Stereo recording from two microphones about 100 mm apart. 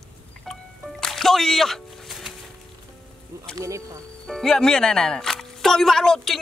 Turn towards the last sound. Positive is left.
turn(degrees=5)  # may be behind; listen again after turning